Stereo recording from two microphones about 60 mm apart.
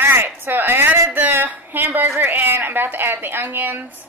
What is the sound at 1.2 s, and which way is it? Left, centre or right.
A woman's voice, right.